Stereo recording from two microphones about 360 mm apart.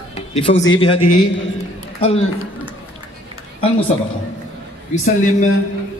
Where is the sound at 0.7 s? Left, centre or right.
Centre.